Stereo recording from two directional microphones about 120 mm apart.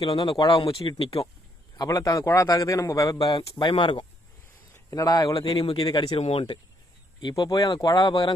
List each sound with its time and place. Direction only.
0.0 s speech: 50° left (ahead or behind)
1.8 s a man's voice: 30° left (ahead or behind)
3.3 s speech: 40° left (ahead or behind)
4.7 s a man's voice: 30° left (ahead or behind)
5.9 s speech: 55° left (ahead or behind)
7.2 s speech: 35° left (ahead or behind)